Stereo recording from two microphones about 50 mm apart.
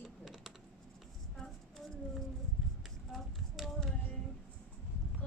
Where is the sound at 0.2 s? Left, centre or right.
Centre.